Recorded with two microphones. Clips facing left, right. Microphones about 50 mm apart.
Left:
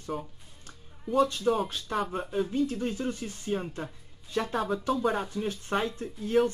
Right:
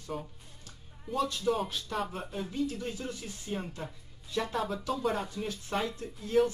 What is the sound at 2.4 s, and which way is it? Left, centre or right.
Speech, left.